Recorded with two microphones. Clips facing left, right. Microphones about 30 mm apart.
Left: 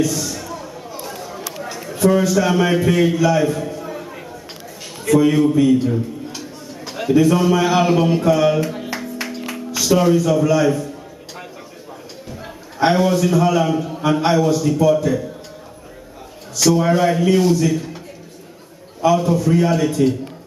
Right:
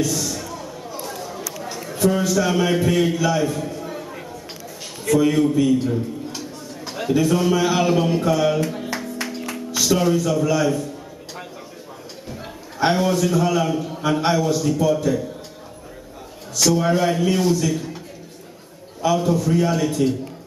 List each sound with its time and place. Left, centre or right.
0.1 s a sound: centre
2.2 s a man's voice: centre
5.2 s a man's voice: centre
5.9 s a sound: centre
7.2 s a man's voice: centre
8.3 s a sound: left
8.5 s music: centre
10.2 s a man's voice: centre
12.9 s a man's voice: centre
16.5 s a man's voice: centre
19.1 s a man's voice: centre